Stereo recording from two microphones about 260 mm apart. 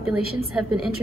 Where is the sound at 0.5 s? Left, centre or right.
Centre.